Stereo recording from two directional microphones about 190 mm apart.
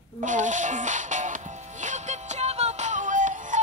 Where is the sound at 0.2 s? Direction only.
40° right (ahead or behind).